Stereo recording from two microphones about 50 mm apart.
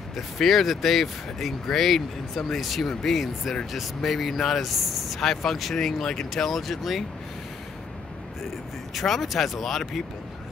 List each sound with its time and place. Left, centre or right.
0.1 s speech: centre
8.9 s speech: centre